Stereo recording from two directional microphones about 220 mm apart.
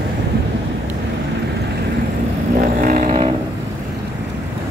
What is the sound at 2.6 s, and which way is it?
Vehicle, 40° right (ahead or behind).